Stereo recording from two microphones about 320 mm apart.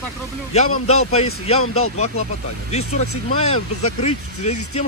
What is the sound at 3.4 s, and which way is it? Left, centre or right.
Speech, centre.